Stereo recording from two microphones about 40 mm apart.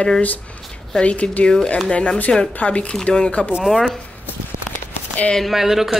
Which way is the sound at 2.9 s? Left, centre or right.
Left.